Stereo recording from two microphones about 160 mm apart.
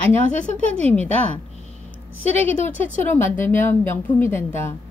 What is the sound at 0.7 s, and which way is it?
Speech, 10° left (ahead or behind).